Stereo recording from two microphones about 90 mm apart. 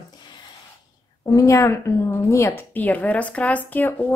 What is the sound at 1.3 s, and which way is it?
A woman's voice, 40° left (ahead or behind).